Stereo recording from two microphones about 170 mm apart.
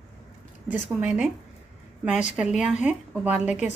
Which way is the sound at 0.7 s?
5° right (ahead or behind).